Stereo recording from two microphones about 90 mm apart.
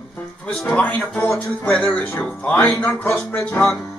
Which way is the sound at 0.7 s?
15° left (ahead or behind).